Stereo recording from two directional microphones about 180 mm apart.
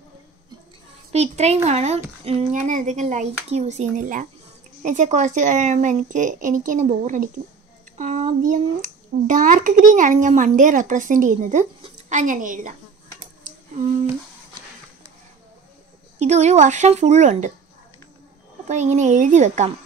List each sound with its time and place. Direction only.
1.1 s a woman's voice: 35° right (ahead or behind)
16.2 s a woman's voice: 40° right (ahead or behind)
18.7 s a woman's voice: 40° right (ahead or behind)